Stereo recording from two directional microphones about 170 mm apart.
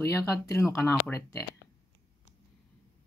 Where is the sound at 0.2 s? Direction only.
20° left (ahead or behind).